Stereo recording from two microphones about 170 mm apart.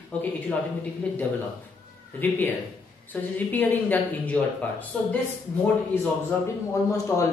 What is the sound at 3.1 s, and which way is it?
Speech, 10° left (ahead or behind).